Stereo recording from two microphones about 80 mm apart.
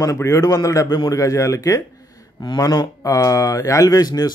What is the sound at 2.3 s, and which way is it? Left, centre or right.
Speech, left.